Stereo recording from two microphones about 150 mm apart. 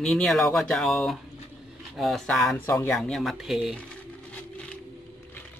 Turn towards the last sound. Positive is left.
turn(degrees=0)  # may be behind; listen again after turning